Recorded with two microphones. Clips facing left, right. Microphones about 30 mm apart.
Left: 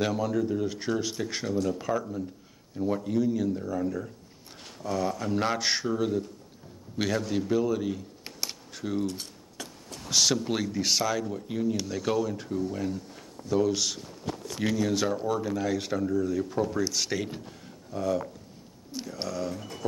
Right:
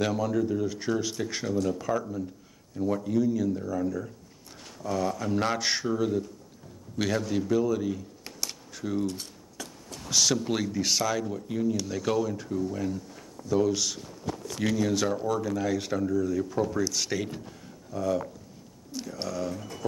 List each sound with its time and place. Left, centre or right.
0.0 s speech: centre
0.6 s speech: centre
2.7 s speech: centre
7.4 s camera: centre
9.0 s speech: centre
11.4 s speech: centre
15.1 s speech: centre
17.3 s a sound: centre
18.9 s speech: centre